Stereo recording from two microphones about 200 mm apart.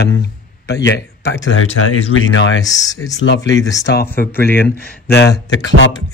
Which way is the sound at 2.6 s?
15° left (ahead or behind).